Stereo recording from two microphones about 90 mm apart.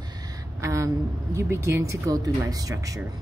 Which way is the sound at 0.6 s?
35° right (ahead or behind).